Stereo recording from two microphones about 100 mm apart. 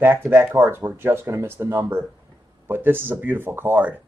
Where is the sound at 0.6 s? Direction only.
25° right (ahead or behind).